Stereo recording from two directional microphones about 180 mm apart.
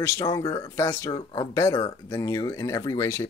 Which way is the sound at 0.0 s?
20° left (ahead or behind).